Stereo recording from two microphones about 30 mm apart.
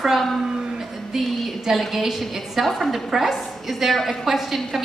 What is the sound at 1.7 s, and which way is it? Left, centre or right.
A woman's voice, centre.